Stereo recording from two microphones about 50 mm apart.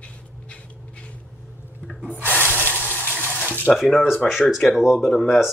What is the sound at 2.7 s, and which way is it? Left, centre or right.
Water, right.